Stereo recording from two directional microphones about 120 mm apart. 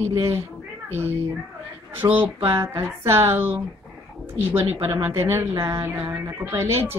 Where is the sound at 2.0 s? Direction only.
30° right (ahead or behind).